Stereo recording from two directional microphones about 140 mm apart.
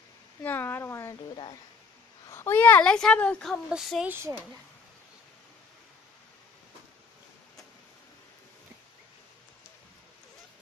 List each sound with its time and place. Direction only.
0.4 s a sound: 15° left (ahead or behind)
2.2 s speech: 20° left (ahead or behind)
3.7 s speech: 5° right (ahead or behind)